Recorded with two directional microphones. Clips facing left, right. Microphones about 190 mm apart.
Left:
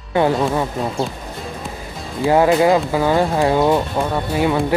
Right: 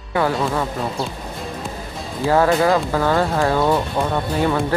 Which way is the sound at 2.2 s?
15° left (ahead or behind).